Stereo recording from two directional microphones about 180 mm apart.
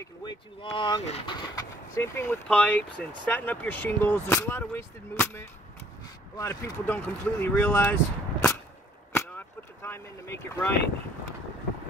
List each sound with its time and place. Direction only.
0.0 s speech: 25° left (ahead or behind)
9.1 s vehicle: 15° left (ahead or behind)